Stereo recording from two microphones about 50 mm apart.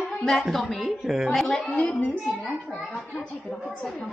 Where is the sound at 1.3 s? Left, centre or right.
Centre.